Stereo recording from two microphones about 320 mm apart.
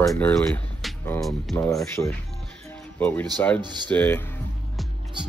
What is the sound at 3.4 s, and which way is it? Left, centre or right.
Speech, centre.